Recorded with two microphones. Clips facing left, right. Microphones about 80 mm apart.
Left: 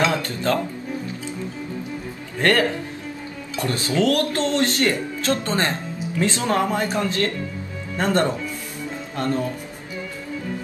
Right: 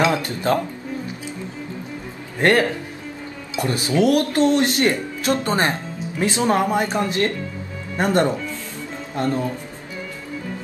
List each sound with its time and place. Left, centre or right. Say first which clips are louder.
0.0 s music: right 2 dB; centre
3.5 s speech: right 2 dB; centre